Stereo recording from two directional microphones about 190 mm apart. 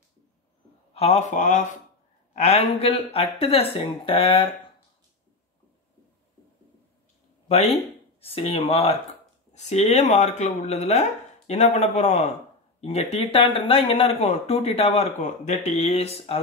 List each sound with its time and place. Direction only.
0.9 s speech: 35° left (ahead or behind)
7.4 s speech: 35° left (ahead or behind)